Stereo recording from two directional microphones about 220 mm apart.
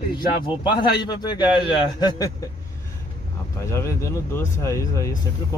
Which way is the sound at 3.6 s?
10° left (ahead or behind).